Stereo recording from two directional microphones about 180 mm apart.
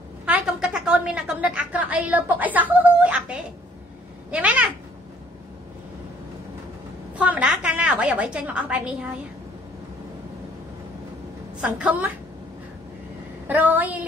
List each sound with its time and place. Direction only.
0.2 s a woman's voice: 5° right (ahead or behind)
7.2 s a woman's voice: 5° right (ahead or behind)
11.6 s a woman's voice: 10° right (ahead or behind)
13.5 s a woman's voice: 10° right (ahead or behind)